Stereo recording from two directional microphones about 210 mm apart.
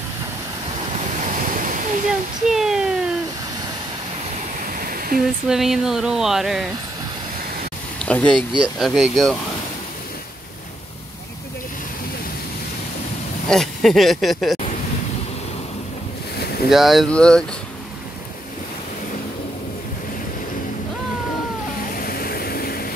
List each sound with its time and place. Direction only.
0.9 s waves: 35° right (ahead or behind)
2.5 s a sound: centre (ahead or behind)
4.7 s waterfall: 45° right (ahead or behind)
5.2 s speech: centre (ahead or behind)
8.0 s speech: 5° left (ahead or behind)
13.5 s speech: centre (ahead or behind)
16.6 s speech: centre (ahead or behind)
21.9 s vehicle: 45° left (ahead or behind)